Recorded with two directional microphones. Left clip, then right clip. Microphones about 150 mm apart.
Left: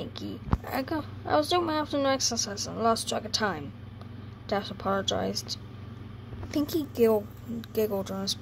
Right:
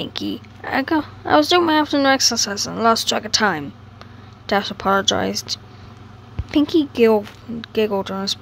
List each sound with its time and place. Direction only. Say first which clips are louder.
0.0 s a woman's voice: right 12 dB; 20° right (ahead or behind)